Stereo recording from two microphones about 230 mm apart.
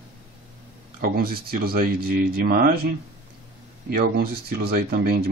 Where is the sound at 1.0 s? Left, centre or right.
Right.